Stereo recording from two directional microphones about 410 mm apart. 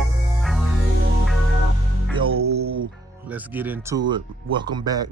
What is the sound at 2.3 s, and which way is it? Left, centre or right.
Music, right.